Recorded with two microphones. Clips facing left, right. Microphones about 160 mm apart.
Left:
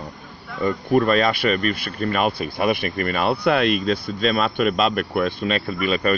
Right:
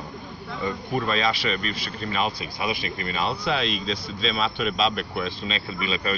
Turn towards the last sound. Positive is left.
turn(degrees=55)  # may be behind; listen again after turning